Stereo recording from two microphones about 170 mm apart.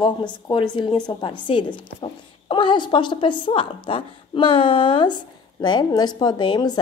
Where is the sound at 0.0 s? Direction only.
25° left (ahead or behind).